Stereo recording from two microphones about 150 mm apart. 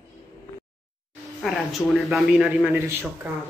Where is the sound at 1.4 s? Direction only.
Centre (ahead or behind).